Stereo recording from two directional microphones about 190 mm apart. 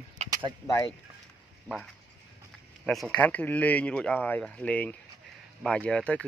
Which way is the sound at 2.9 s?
Centre (ahead or behind).